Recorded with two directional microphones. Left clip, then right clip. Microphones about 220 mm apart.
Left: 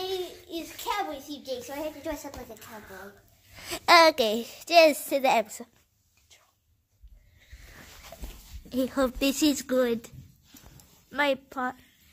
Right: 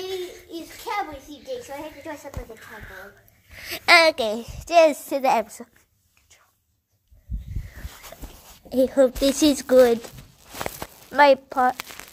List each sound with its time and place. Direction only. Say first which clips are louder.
0.1 s a sound: right 2 dB; 25° right (ahead or behind)
0.5 s a sound: even; 20° left (ahead or behind)
2.8 s a woman's voice: right 4 dB; centre (ahead or behind)
3.5 s a child's voice: right 3 dB; 10° left (ahead or behind)
8.6 s speech: right 9 dB; centre (ahead or behind)
9.0 s speech: right 6 dB; 20° left (ahead or behind)
9.4 s a child's voice: right 11 dB; 10° left (ahead or behind)